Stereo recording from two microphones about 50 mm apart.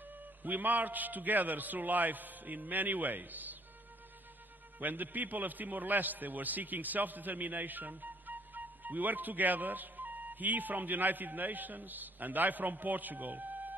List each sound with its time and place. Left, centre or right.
0.4 s a man's voice: right
4.7 s a man's voice: right